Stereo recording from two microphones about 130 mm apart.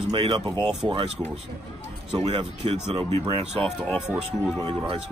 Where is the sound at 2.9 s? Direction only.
45° right (ahead or behind).